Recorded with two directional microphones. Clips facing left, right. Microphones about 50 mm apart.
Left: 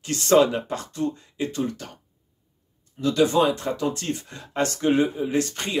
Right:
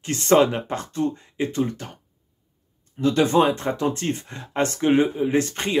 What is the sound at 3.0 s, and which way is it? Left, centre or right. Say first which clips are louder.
Speech: right 1 dB; right.